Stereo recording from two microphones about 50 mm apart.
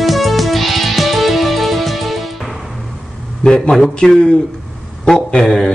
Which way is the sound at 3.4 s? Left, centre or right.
Centre.